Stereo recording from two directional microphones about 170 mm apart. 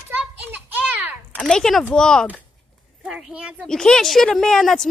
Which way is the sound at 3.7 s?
5° left (ahead or behind).